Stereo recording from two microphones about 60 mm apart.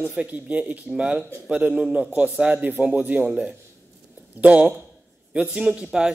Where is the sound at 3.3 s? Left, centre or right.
Centre.